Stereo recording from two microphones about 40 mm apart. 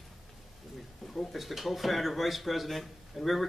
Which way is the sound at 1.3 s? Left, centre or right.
Centre.